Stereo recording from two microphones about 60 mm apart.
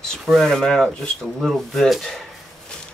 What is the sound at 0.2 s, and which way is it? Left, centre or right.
Speech, centre.